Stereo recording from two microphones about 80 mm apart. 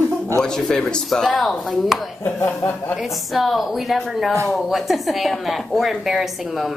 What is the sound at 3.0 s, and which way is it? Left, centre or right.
A woman's voice, centre.